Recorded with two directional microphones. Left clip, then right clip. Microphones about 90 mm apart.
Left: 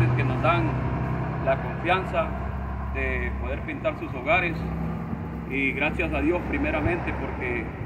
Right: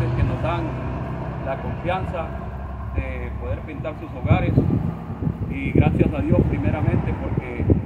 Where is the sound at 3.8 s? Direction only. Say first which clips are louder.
Left 5 dB; 30° right (ahead or behind).